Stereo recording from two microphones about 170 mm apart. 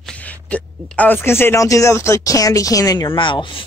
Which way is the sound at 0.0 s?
10° left (ahead or behind).